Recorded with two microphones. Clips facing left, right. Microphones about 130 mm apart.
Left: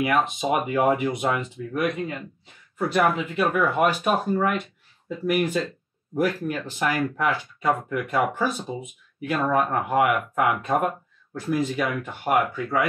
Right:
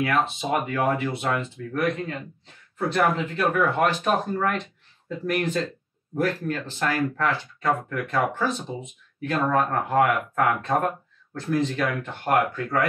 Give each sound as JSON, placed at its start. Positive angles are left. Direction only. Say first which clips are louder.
{"t": 0.0, "sound": "speech", "louder": "left 1 dB", "side_deg": 15}